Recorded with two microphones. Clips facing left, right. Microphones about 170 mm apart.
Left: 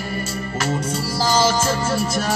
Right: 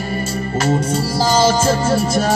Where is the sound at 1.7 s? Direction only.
35° right (ahead or behind).